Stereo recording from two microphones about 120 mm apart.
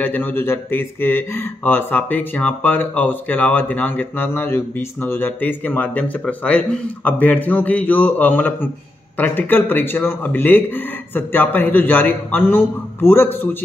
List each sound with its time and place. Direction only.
0.0 s a man's voice: 15° left (ahead or behind)